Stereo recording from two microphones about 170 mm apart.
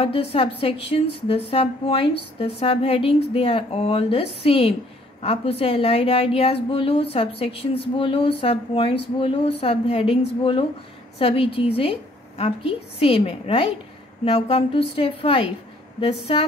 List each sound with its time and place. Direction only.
0.0 s a woman's voice: 35° left (ahead or behind)